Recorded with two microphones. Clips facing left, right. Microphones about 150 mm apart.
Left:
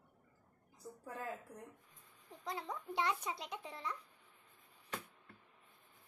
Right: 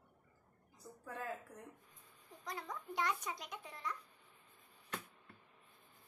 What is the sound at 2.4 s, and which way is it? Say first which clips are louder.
Speech: left 3 dB; 25° left (ahead or behind).